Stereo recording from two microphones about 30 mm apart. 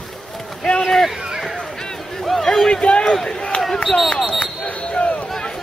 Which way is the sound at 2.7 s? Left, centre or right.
Left.